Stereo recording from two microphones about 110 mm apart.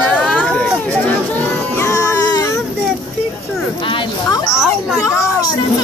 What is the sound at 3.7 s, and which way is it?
Speech, 50° left (ahead or behind).